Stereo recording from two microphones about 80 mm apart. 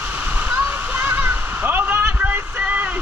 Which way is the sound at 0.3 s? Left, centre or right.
Centre.